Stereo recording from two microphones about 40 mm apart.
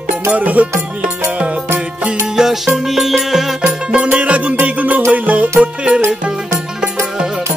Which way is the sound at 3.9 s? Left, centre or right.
Right.